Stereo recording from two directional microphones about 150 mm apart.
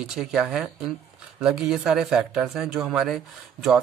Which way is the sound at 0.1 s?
5° right (ahead or behind).